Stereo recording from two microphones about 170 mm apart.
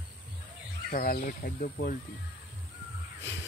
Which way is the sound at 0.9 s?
55° left (ahead or behind).